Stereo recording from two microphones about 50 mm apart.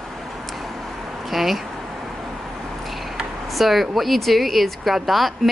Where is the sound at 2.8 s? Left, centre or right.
Centre.